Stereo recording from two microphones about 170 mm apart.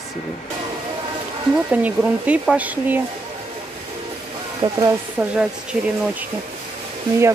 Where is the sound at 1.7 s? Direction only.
10° right (ahead or behind).